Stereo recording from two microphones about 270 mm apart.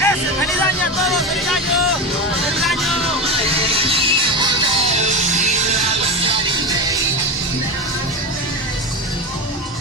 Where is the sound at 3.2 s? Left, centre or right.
Right.